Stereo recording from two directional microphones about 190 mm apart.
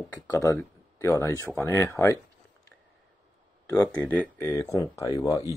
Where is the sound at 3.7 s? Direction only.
20° left (ahead or behind).